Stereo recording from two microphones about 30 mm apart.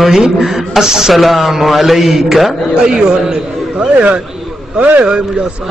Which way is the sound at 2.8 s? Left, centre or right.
Right.